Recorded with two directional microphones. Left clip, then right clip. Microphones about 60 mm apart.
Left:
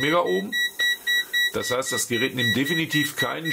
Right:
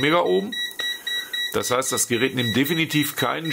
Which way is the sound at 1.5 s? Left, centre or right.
Right.